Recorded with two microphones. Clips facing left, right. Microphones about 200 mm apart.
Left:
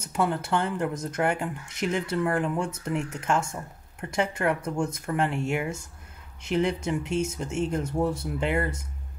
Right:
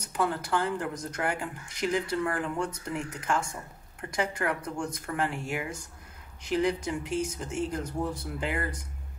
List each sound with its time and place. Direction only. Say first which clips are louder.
0.0 s speech: left 3 dB; 25° left (ahead or behind)